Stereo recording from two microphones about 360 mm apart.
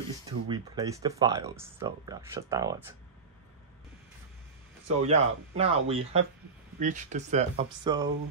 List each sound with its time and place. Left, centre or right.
0.3 s speech: centre
4.8 s speech: centre